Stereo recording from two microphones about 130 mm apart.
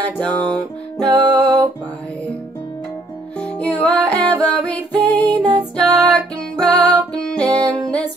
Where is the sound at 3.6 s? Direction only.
10° left (ahead or behind).